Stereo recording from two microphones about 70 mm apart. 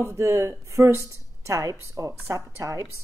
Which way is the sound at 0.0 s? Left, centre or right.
Right.